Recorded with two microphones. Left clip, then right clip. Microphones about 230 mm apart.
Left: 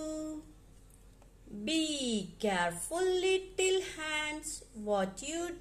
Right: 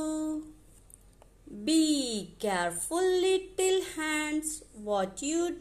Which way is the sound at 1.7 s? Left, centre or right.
Right.